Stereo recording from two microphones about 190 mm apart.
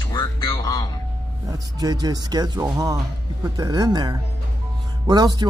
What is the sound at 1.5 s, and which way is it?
Speech, 20° right (ahead or behind).